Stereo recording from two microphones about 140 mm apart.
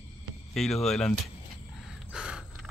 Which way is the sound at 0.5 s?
Centre (ahead or behind).